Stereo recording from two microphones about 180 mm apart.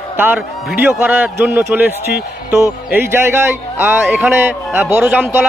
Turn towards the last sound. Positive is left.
turn(degrees=-10)  # may be behind; listen again after turning